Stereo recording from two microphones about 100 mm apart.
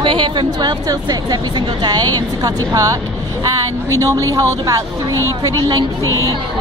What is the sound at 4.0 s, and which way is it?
A woman's voice, 35° right (ahead or behind).